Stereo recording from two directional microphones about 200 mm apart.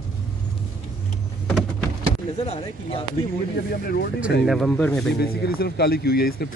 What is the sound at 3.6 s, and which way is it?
Speech, 50° left (ahead or behind).